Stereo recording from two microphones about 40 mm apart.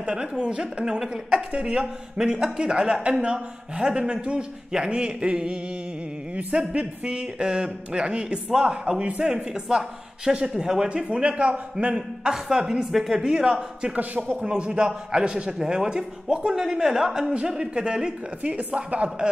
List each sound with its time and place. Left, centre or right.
0.0 s speech: centre
13.2 s speech: centre
16.5 s speech: centre
17.5 s speech: right
18.4 s speech: right